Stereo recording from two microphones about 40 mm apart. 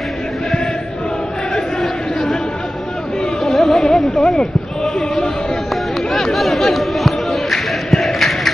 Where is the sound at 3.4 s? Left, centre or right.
Centre.